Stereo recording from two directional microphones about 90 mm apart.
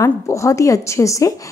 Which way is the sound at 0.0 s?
35° left (ahead or behind).